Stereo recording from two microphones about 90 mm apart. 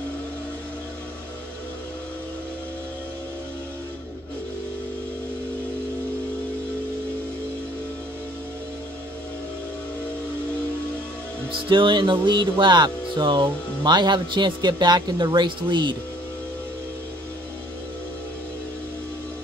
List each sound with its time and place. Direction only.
11.7 s speech: 65° right (ahead or behind)